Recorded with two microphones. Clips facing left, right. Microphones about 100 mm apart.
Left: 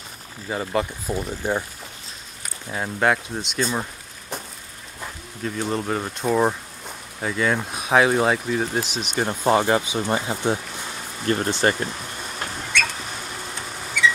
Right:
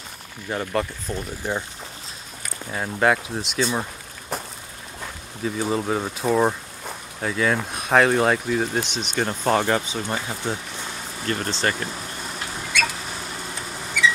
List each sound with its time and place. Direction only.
0.5 s speech: 5° left (ahead or behind)
2.7 s speech: centre (ahead or behind)
5.4 s speech: 5° right (ahead or behind); by 11.7 s 20° left (ahead or behind)